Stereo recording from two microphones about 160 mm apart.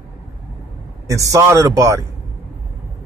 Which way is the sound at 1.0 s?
20° right (ahead or behind).